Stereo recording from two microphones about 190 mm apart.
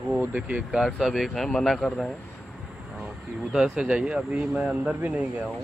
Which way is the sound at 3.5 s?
5° right (ahead or behind).